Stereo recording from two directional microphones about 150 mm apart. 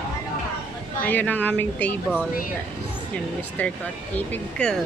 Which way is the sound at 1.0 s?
10° left (ahead or behind).